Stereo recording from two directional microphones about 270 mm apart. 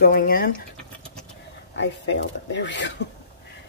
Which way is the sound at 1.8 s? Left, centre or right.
Left.